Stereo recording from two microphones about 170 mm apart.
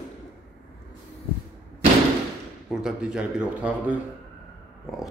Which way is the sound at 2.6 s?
5° right (ahead or behind).